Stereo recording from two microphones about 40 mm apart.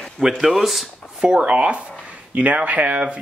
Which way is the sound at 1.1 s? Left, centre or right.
Right.